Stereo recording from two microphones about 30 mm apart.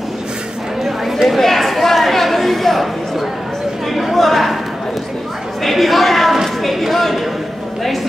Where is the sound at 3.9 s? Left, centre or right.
Centre.